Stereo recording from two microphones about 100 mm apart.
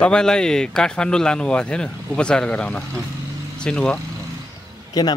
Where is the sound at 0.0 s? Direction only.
10° left (ahead or behind).